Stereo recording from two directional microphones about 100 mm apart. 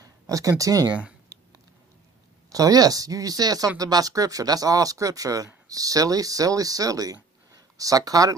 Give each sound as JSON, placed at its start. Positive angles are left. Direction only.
{"t": 0.0, "sound": "speech", "side_deg": -35}
{"t": 2.5, "sound": "speech", "side_deg": -35}